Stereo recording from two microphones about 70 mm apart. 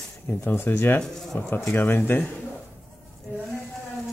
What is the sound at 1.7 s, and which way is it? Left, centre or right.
Speech, left.